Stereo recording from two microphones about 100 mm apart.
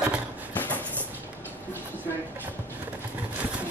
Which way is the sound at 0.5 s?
20° left (ahead or behind).